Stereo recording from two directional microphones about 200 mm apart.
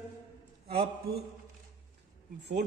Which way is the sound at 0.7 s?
50° right (ahead or behind).